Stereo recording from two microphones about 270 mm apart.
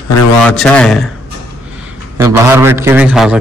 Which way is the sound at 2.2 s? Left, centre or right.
Centre.